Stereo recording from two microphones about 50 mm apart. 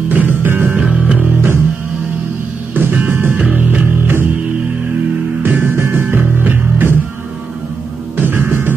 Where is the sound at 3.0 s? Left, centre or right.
Right.